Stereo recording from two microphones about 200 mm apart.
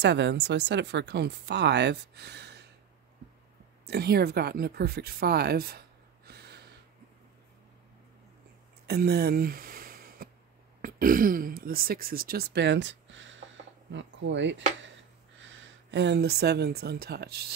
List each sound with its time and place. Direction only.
0.0 s speech: 60° right (ahead or behind)
3.8 s speech: 55° right (ahead or behind)
8.8 s a sound: 50° right (ahead or behind)
10.8 s speech: 45° right (ahead or behind)